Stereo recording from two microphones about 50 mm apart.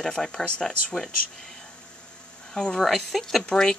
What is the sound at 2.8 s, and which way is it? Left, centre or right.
Speech, centre.